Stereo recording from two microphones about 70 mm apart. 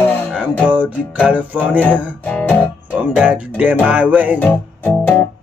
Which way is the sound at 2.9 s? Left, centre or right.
Centre.